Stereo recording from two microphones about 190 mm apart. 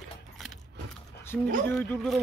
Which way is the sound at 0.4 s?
Centre (ahead or behind).